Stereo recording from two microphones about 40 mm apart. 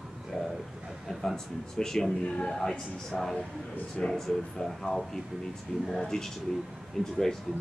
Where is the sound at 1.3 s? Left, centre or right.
Centre.